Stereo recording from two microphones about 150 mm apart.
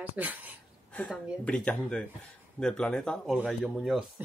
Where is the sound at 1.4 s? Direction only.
10° left (ahead or behind).